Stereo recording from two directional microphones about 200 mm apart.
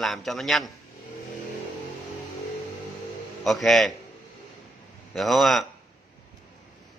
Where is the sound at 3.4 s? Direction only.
Centre (ahead or behind).